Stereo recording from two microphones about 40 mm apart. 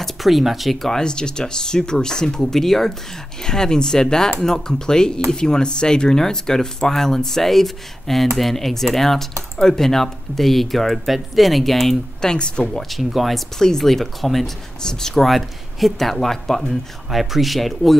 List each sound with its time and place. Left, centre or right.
0.0 s speech: centre
1.0 s speech: left; by 12.0 s centre
12.2 s speech: left
13.1 s speech: centre
13.6 s speech: centre